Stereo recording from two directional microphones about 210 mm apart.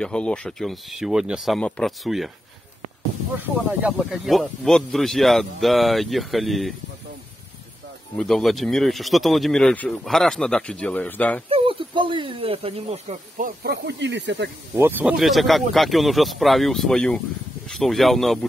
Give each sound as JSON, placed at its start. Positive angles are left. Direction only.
{"t": 0.0, "sound": "speech", "side_deg": 5}
{"t": 3.3, "sound": "speech", "side_deg": -5}
{"t": 8.2, "sound": "speech", "side_deg": 0}
{"t": 11.4, "sound": "speech", "side_deg": -25}
{"t": 13.7, "sound": "speech", "side_deg": -55}
{"t": 14.8, "sound": "speech", "side_deg": -10}